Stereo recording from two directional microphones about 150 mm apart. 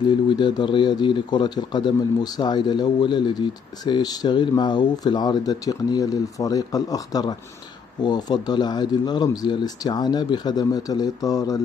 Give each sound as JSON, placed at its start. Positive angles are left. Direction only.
{"t": 0.3, "sound": "a man's voice", "side_deg": 30}